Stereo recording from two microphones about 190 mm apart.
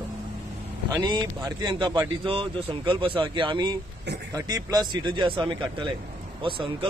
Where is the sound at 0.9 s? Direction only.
20° right (ahead or behind).